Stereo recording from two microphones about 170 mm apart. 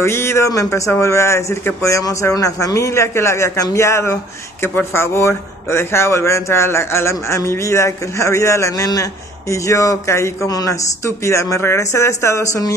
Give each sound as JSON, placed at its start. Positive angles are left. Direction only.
{"t": 0.0, "sound": "speech", "side_deg": 15}